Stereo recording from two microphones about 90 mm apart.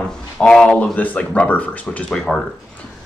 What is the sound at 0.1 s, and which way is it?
Speech, 10° left (ahead or behind).